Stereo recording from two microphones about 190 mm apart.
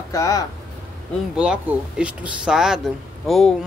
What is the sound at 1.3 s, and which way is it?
Speech, 5° right (ahead or behind).